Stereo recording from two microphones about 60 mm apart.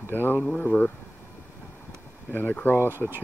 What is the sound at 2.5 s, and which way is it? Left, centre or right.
Speech, left.